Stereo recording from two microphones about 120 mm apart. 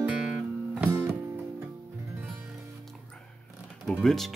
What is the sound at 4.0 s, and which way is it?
Speech, centre (ahead or behind).